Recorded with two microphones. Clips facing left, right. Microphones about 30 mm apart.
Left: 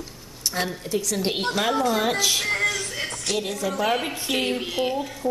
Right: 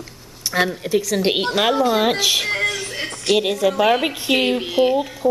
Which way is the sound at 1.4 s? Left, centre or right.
Right.